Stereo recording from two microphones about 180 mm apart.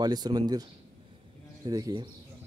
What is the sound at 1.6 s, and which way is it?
Speech, 20° right (ahead or behind).